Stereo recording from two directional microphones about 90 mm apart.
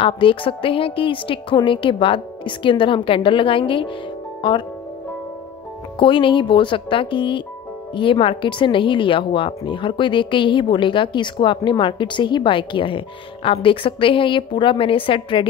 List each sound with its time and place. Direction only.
0.0 s speech: 80° left; by 4.6 s 60° left (ahead or behind)
5.9 s speech: 65° left (ahead or behind)